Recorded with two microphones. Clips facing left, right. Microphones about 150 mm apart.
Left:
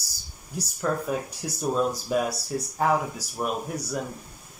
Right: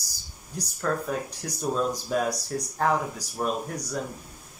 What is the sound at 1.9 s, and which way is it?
Speech, 15° right (ahead or behind).